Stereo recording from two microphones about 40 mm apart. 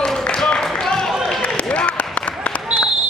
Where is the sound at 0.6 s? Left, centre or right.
Centre.